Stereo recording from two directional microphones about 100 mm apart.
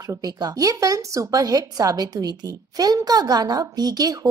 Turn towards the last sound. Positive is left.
turn(degrees=-40)  # may be behind; listen again after turning